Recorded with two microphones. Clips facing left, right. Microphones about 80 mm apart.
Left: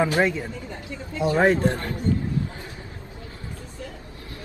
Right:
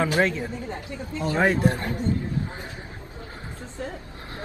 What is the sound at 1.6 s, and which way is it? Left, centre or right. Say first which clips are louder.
A man's voice: right 1 dB; right.